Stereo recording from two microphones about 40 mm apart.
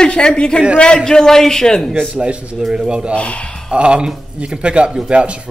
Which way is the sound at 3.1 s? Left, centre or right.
Left.